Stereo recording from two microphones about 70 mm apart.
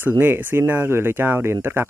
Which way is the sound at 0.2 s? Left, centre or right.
Right.